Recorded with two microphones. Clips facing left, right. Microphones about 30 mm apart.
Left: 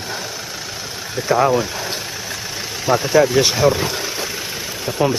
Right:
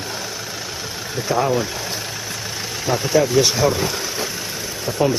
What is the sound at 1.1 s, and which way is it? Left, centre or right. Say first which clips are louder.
Speech: left 4 dB; centre.